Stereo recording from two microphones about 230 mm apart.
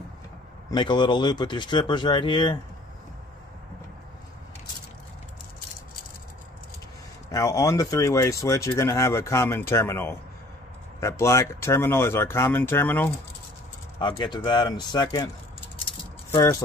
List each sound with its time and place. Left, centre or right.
0.7 s speech: centre
7.2 s speech: centre
13.9 s speech: centre